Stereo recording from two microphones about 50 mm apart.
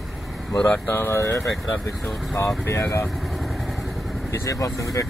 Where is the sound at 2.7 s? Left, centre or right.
Left.